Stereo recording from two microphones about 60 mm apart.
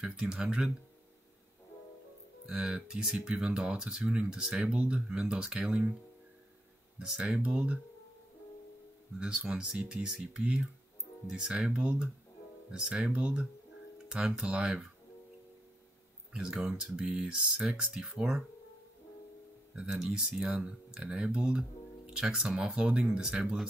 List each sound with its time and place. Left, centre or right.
0.0 s speech: centre
2.4 s speech: centre
7.1 s speech: centre
9.2 s speech: centre
16.3 s speech: centre
19.7 s speech: centre